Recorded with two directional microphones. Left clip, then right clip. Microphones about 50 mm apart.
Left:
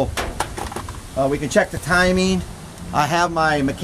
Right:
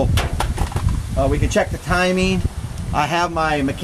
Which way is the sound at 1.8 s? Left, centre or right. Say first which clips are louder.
Left 1 dB; left.